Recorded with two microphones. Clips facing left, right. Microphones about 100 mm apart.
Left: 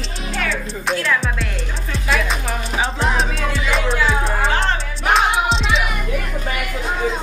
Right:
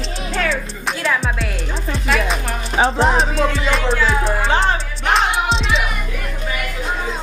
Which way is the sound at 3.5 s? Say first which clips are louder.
Right 1 dB; centre (ahead or behind).